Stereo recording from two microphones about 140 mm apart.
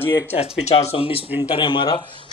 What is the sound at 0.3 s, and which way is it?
A man's voice, 45° left (ahead or behind).